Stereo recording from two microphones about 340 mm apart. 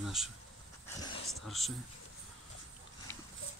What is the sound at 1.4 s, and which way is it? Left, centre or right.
Speech, centre.